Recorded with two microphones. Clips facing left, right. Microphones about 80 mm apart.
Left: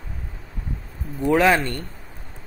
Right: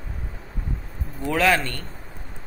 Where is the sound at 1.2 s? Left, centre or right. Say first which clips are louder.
Left 3 dB; centre.